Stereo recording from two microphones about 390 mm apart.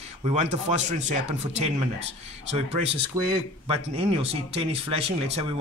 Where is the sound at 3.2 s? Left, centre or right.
Centre.